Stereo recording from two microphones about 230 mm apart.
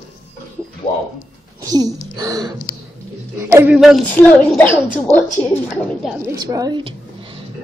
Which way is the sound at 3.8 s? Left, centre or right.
Centre.